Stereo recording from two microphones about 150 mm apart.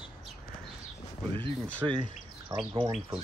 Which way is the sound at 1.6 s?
10° left (ahead or behind).